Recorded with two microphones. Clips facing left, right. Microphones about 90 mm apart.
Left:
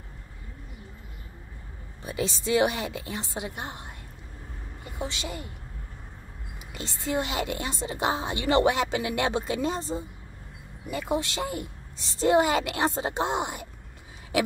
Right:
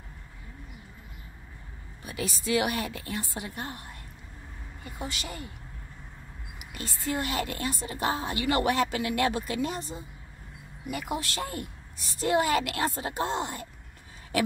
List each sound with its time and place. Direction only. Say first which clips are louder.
2.0 s a woman's voice: left 3 dB; 25° left (ahead or behind)
6.6 s a woman's voice: even; 25° left (ahead or behind)